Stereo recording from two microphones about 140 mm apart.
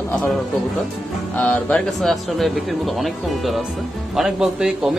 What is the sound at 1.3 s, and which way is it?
Music, 15° left (ahead or behind).